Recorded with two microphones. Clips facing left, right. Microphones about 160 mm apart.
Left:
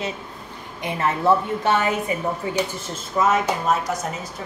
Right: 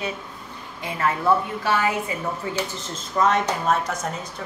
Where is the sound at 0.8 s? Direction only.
20° left (ahead or behind).